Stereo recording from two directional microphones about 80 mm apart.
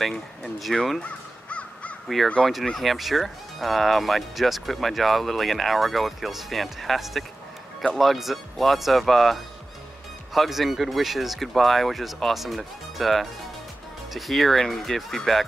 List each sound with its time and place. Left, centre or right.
0.4 s speech: centre
1.0 s crow: centre
2.1 s speech: centre